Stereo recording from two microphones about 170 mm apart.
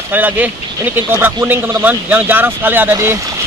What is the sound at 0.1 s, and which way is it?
A man's voice, 10° right (ahead or behind).